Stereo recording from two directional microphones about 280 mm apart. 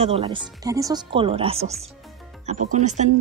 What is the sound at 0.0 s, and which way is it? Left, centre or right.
Speech, right.